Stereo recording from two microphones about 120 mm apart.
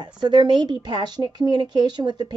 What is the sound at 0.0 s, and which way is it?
A woman's voice, 40° right (ahead or behind).